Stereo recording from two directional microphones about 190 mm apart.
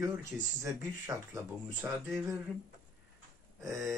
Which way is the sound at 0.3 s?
Centre (ahead or behind).